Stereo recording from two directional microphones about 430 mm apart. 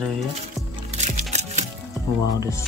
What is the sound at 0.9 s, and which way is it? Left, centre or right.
Music, centre.